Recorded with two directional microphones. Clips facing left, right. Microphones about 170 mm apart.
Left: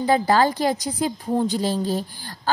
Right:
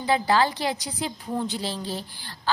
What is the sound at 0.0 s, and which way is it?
A woman's voice, 45° left (ahead or behind).